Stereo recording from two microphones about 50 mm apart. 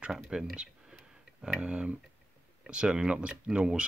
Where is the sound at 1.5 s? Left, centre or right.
Right.